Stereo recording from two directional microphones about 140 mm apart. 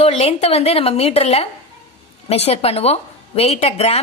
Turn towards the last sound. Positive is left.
turn(degrees=45)  # may be behind; listen again after turning